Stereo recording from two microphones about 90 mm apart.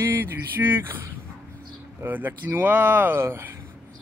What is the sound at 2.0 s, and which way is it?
Speech, 25° right (ahead or behind).